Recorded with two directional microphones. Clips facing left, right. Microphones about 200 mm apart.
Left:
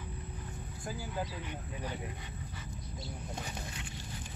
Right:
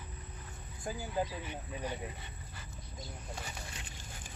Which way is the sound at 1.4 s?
10° right (ahead or behind).